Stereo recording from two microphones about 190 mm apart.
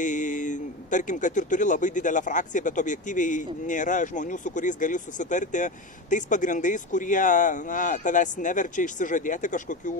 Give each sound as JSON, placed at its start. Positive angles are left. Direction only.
{"t": 0.0, "sound": "a man's voice", "side_deg": 40}